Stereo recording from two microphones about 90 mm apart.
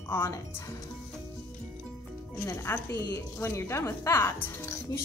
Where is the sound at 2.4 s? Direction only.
30° left (ahead or behind).